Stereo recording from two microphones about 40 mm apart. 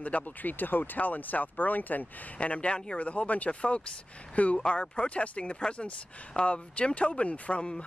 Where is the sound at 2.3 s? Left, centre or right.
Left.